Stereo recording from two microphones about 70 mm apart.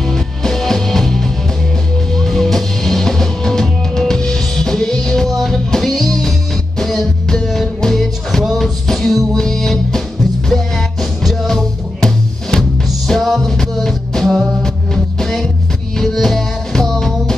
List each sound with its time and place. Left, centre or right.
0.0 s music: centre